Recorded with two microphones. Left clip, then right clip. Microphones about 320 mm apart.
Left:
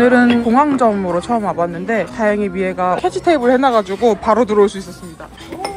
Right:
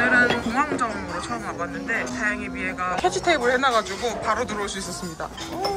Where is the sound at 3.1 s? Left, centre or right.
Centre.